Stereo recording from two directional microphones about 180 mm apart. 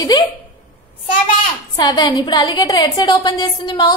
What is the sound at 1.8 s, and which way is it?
A woman's voice, 25° left (ahead or behind).